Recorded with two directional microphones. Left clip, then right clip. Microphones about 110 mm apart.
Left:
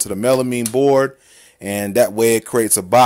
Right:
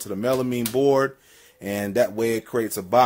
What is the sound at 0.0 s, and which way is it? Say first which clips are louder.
Speech: left 7 dB; 60° left (ahead or behind).